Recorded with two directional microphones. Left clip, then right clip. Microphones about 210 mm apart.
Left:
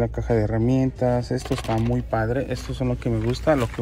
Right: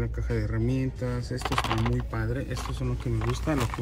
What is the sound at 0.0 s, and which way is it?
Speech, 60° left (ahead or behind).